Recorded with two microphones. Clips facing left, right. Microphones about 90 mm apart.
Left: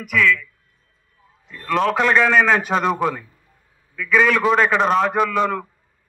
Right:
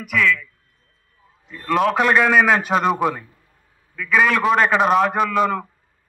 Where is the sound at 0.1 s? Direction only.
5° right (ahead or behind).